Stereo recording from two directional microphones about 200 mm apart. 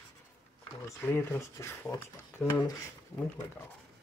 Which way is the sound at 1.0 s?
10° left (ahead or behind).